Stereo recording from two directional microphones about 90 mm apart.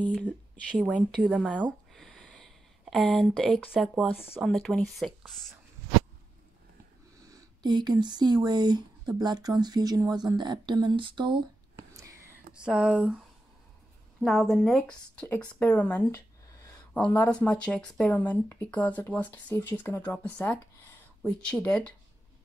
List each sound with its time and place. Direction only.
0.0 s speech: 15° left (ahead or behind)
0.7 s speech: 10° right (ahead or behind)
1.5 s speech: 15° left (ahead or behind)
2.0 s a sound: 5° left (ahead or behind)
4.4 s speech: 5° left (ahead or behind)
7.2 s speech: 50° right (ahead or behind); by 11.4 s 65° right (ahead or behind)
12.5 s speech: 15° right (ahead or behind)
14.2 s speech: centre (ahead or behind)
14.8 s speech: 15° left (ahead or behind)